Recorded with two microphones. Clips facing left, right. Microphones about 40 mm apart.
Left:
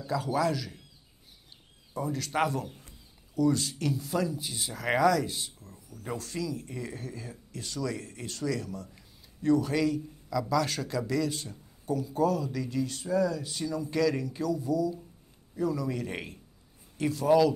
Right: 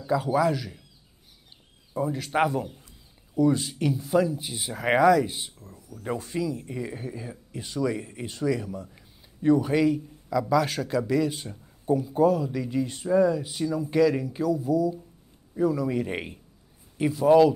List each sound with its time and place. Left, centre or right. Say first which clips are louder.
0.0 s a man's voice: right 5 dB; centre
2.0 s a man's voice: right 4 dB; centre